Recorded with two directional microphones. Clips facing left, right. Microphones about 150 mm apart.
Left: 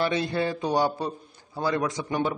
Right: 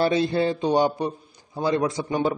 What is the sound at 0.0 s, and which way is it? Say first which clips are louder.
A man's voice: right 4 dB; 30° right (ahead or behind).